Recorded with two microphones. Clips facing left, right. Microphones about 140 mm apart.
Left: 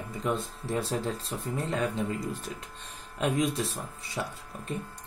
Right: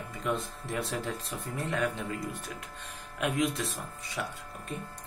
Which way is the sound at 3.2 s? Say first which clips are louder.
Left 2 dB; 30° left (ahead or behind).